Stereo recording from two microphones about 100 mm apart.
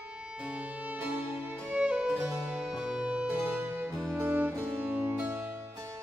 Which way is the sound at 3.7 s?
30° right (ahead or behind).